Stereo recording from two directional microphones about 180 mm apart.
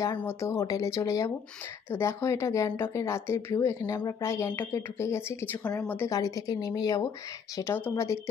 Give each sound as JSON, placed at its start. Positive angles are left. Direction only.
{"t": 0.0, "sound": "a woman's voice", "side_deg": 15}